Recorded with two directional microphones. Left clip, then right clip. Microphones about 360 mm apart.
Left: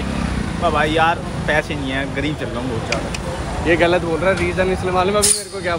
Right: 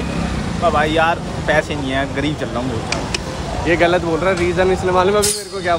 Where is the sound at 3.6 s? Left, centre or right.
Centre.